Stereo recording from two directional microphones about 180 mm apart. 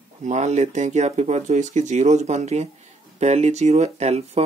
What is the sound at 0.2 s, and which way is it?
Speech, 40° right (ahead or behind).